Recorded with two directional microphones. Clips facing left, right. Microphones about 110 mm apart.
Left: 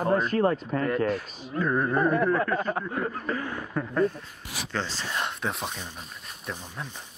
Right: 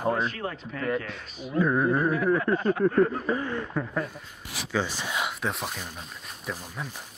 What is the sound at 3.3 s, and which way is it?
Speech, 15° right (ahead or behind).